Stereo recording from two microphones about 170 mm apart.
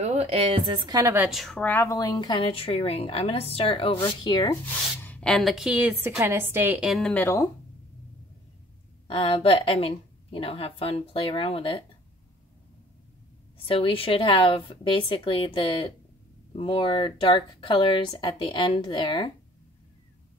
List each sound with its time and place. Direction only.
0.0 s a woman's voice: 40° right (ahead or behind); by 1.3 s 15° right (ahead or behind)
1.3 s a woman's voice: centre (ahead or behind); by 4.6 s 25° left (ahead or behind)
5.0 s a woman's voice: 5° left (ahead or behind); by 7.0 s 10° right (ahead or behind)
7.0 s speech: 5° left (ahead or behind)
9.0 s a woman's voice: 30° left (ahead or behind)
13.7 s a woman's voice: 35° left (ahead or behind)